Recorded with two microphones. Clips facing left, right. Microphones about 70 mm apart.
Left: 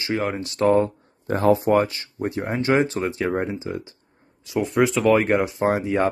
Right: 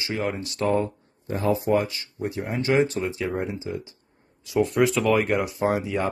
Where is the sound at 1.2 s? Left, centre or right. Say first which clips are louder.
Left 5 dB; left.